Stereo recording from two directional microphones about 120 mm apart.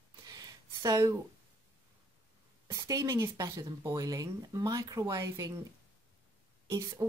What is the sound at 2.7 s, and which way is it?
Speech, 25° right (ahead or behind).